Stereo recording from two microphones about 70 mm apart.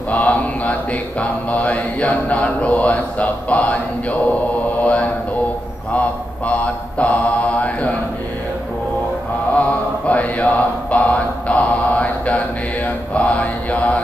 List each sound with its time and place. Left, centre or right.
0.1 s mantra: left
9.5 s mantra: centre